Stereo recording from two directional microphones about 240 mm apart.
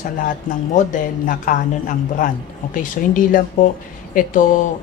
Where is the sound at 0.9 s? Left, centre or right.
Left.